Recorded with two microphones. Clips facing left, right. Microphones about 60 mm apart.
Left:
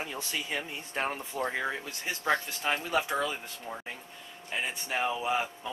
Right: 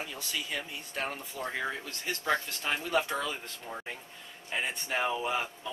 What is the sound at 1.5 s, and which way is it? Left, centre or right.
Speech, centre.